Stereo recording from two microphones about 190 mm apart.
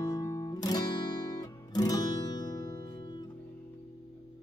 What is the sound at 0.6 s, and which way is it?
Guitar, 20° left (ahead or behind).